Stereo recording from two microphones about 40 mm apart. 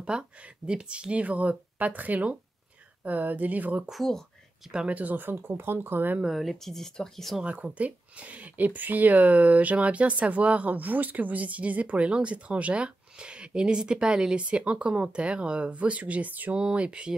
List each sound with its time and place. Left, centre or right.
0.1 s speech: right
1.2 s speech: right
4.8 s speech: right
6.3 s speech: centre
6.6 s speech: centre
7.4 s speech: right
16.5 s speech: right